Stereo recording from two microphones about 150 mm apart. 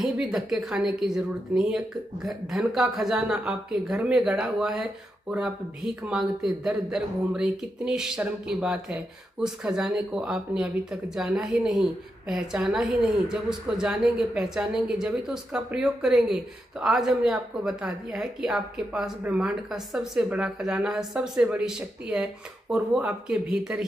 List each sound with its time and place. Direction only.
0.0 s a man's voice: centre (ahead or behind)